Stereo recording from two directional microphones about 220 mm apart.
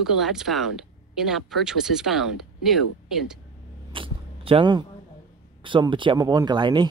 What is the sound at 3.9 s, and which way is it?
Biting, 25° right (ahead or behind).